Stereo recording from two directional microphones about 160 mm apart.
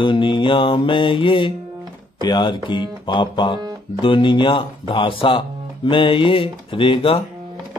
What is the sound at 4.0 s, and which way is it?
Mantra, 30° left (ahead or behind).